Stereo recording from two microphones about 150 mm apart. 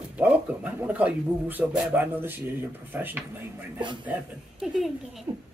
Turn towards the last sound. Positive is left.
turn(degrees=0)  # may be behind; listen again after turning